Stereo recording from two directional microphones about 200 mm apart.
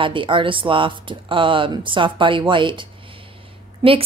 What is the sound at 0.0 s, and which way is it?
A woman's voice, 25° right (ahead or behind).